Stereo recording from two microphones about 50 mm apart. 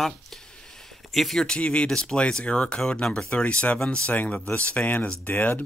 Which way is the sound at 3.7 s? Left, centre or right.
Centre.